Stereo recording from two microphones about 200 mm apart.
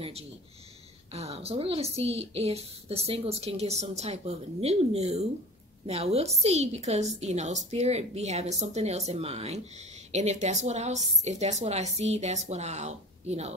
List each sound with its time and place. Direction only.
1.1 s a woman's voice: 30° right (ahead or behind)